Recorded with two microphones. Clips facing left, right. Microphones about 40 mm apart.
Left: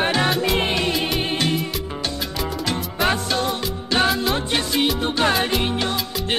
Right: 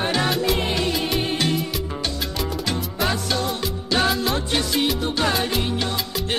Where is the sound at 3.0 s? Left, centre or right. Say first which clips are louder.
Left 3 dB; left.